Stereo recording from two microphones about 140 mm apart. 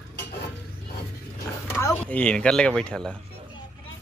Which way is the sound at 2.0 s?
10° left (ahead or behind).